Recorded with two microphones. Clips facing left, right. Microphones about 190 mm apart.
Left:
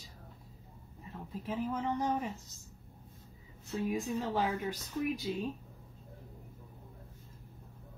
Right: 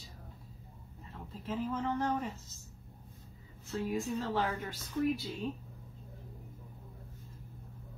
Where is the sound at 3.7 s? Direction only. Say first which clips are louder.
Left 1 dB; 15° left (ahead or behind).